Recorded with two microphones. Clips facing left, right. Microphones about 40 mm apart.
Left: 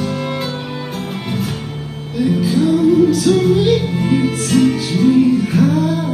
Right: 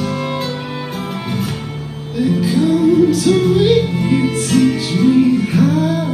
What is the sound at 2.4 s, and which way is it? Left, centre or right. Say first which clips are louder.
Music: even; centre.